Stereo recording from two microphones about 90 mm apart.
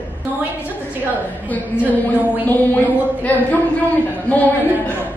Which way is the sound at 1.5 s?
20° left (ahead or behind).